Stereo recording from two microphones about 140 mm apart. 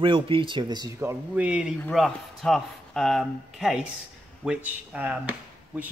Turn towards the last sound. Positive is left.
turn(degrees=-10)  # may be behind; listen again after turning